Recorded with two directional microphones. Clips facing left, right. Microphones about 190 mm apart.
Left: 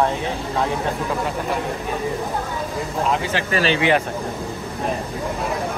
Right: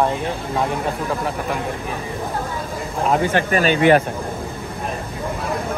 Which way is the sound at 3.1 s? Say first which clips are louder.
Right 7 dB; 50° right (ahead or behind).